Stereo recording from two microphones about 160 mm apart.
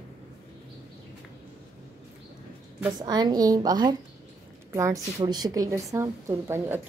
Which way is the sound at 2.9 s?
25° right (ahead or behind).